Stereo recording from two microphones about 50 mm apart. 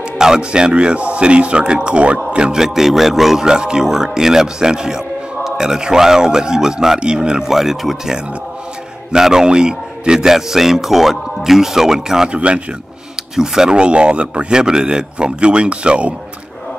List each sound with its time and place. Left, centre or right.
0.2 s speech: centre
2.6 s speech: centre
7.4 s speech: centre
12.3 s speech: right